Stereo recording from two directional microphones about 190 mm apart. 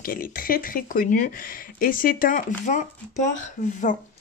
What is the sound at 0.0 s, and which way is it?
Speech, 50° left (ahead or behind).